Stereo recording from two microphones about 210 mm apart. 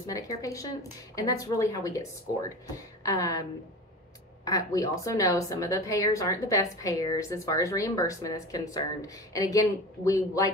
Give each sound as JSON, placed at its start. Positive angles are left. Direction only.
{"t": 0.0, "sound": "a woman's voice", "side_deg": 15}
{"t": 3.0, "sound": "a woman's voice", "side_deg": 15}
{"t": 4.5, "sound": "a woman's voice", "side_deg": 15}